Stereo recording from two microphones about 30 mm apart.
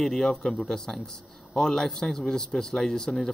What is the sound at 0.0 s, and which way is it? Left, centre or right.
A man's voice, centre.